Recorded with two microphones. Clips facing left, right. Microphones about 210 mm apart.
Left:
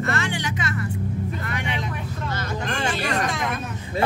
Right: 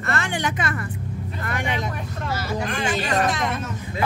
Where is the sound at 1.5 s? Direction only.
45° right (ahead or behind).